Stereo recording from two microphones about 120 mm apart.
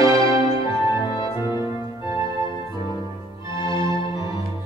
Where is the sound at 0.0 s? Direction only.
30° right (ahead or behind).